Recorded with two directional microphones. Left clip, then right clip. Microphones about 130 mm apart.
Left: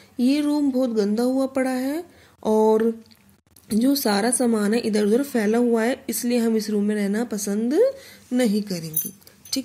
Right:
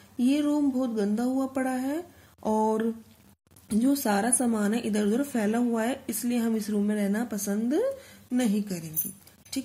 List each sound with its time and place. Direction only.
0.2 s a woman's voice: 25° left (ahead or behind)